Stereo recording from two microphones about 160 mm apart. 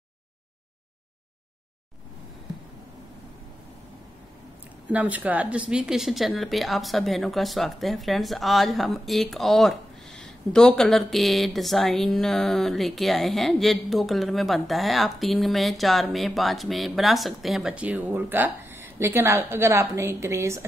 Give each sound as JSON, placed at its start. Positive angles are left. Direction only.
{"t": 4.8, "sound": "a woman's voice", "side_deg": -10}